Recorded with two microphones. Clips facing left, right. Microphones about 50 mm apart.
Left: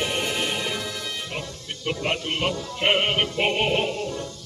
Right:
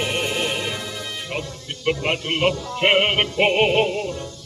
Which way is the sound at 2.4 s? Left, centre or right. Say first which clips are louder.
Right 5 dB; right.